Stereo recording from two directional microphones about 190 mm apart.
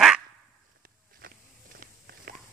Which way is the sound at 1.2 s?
50° right (ahead or behind).